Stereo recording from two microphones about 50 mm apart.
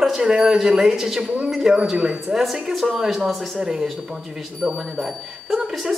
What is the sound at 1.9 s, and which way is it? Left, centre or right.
Speech, centre.